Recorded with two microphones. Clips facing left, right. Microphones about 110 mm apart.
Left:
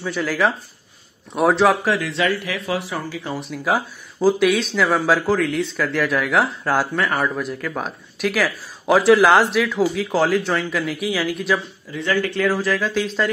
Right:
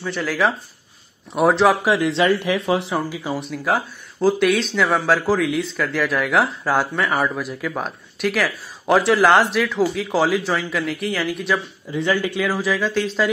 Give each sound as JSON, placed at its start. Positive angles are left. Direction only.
{"t": 0.0, "sound": "speech", "side_deg": 0}
{"t": 1.9, "sound": "speech", "side_deg": -25}
{"t": 3.3, "sound": "speech", "side_deg": 0}
{"t": 11.9, "sound": "speech", "side_deg": -15}
{"t": 12.4, "sound": "speech", "side_deg": 0}